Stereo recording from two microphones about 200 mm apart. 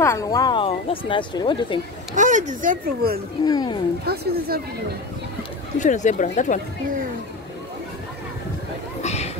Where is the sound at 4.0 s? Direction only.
50° right (ahead or behind).